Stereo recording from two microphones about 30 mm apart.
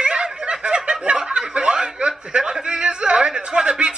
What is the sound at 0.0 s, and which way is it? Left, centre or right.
Snicker, right.